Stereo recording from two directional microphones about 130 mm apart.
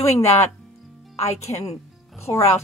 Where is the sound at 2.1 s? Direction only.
20° left (ahead or behind).